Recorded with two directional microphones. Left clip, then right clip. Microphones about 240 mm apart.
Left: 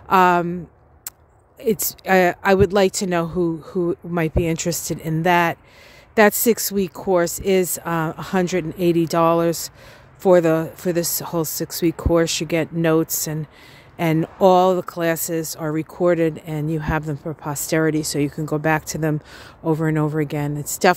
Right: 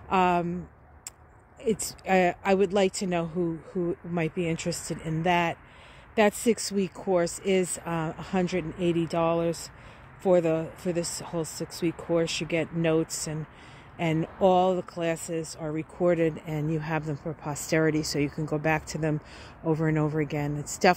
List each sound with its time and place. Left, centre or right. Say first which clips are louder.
0.1 s speech: left 9 dB; left
1.6 s speech: left 7 dB; left